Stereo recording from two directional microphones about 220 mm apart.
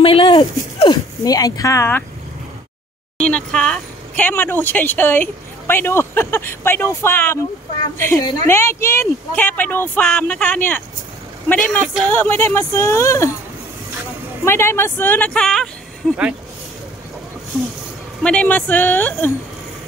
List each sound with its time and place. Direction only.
0.0 s a sound: 25° left (ahead or behind)
3.2 s speech: 5° left (ahead or behind)
14.4 s speech: 10° left (ahead or behind)
18.2 s speech: 5° left (ahead or behind)